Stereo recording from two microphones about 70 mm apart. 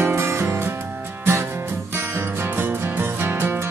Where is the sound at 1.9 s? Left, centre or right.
Right.